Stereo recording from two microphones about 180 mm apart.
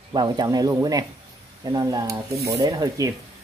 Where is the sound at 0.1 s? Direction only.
25° right (ahead or behind).